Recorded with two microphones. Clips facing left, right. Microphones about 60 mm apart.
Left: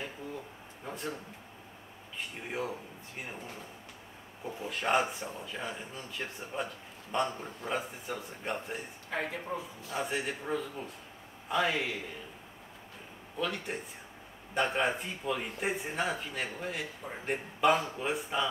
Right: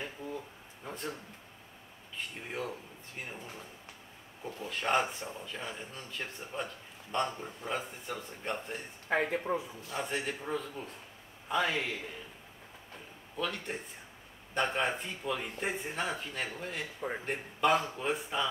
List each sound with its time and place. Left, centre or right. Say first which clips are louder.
0.8 s a sound: left 1 dB; centre
2.1 s speech: left 2 dB; centre
4.5 s speech: left 1 dB; centre
9.1 s a man's voice: right 5 dB; right
9.8 s speech: left 3 dB; centre
13.4 s speech: left 1 dB; centre